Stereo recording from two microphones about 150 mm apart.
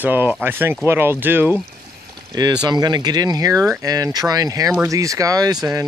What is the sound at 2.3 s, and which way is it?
Speech, 25° right (ahead or behind).